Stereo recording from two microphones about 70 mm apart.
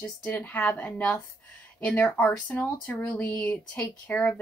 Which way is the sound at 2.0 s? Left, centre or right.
Centre.